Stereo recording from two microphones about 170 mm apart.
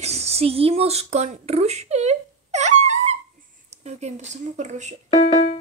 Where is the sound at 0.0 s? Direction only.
40° right (ahead or behind).